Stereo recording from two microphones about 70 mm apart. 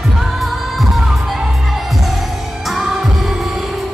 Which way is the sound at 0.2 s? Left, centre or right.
Centre.